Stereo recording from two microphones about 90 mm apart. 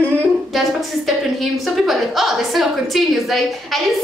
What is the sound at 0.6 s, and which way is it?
A woman's voice, centre (ahead or behind).